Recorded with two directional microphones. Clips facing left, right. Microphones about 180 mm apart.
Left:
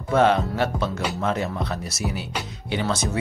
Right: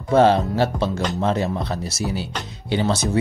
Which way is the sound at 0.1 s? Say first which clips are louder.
Right 4 dB; 30° right (ahead or behind).